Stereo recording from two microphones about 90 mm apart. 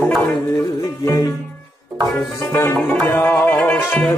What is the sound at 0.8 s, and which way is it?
Music, 45° left (ahead or behind).